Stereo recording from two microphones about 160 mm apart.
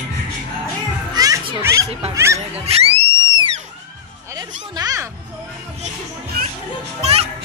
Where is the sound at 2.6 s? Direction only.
40° right (ahead or behind).